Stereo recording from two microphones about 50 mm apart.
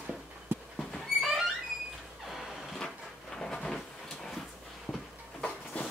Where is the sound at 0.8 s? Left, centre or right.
Centre.